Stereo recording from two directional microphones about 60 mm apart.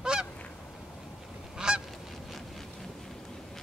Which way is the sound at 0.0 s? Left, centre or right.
Centre.